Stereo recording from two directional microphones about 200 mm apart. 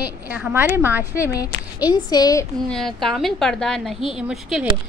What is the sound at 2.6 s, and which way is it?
A woman's voice, centre (ahead or behind).